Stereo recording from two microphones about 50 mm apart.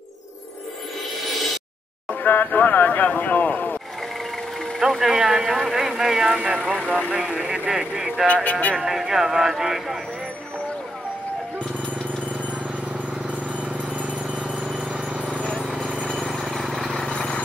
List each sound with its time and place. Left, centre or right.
2.2 s speech: left
4.7 s speech: centre
6.2 s speech: centre
8.5 s speech: left
8.7 s speech: centre
14.6 s a sound: right
16.3 s vehicle: centre
16.5 s vehicle: centre